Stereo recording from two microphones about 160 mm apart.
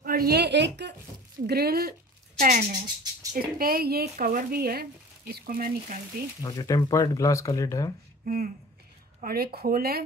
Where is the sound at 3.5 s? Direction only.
65° right (ahead or behind).